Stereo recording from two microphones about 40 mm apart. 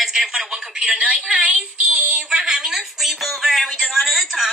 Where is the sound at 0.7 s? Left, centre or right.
Right.